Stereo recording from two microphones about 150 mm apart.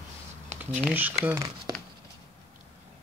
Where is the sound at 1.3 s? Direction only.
25° right (ahead or behind).